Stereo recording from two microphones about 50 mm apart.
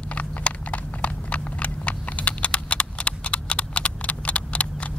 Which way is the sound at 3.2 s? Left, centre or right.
Left.